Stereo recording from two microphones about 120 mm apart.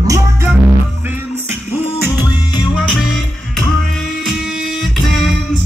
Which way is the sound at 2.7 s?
5° right (ahead or behind).